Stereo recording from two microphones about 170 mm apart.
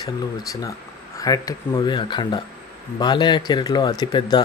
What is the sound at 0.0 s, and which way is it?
Speech, 20° left (ahead or behind).